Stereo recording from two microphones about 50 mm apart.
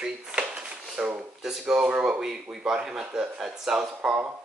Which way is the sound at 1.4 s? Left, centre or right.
Centre.